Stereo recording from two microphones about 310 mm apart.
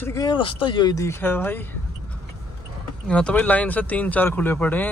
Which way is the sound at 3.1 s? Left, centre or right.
Centre.